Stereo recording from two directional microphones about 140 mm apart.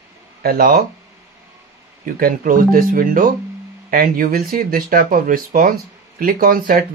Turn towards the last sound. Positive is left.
turn(degrees=-90)